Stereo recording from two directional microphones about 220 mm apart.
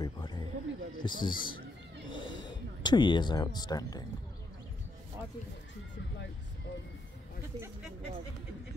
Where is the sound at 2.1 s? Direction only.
20° left (ahead or behind).